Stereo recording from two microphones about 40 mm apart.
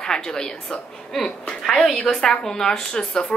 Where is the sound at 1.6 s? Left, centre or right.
Centre.